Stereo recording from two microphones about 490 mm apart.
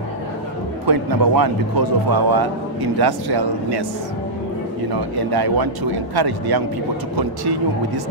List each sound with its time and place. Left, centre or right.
0.8 s speech: right
5.1 s speech: right